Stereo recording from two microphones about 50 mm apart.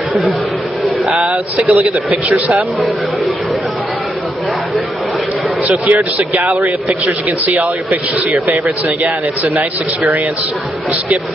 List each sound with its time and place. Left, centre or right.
1.0 s speech: right
5.7 s a man's voice: right